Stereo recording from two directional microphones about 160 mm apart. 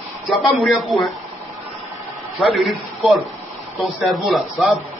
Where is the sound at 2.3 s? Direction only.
Centre (ahead or behind).